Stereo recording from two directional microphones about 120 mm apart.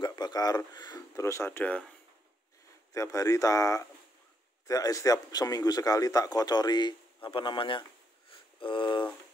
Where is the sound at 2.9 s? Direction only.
25° left (ahead or behind); by 7.8 s 45° left (ahead or behind).